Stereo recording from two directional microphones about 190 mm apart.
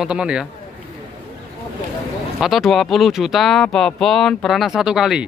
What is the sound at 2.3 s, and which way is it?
Speech, centre (ahead or behind).